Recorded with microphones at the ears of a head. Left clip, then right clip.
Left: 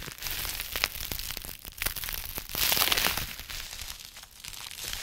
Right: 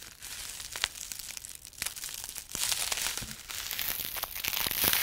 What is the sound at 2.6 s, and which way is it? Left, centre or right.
Crumpling, left.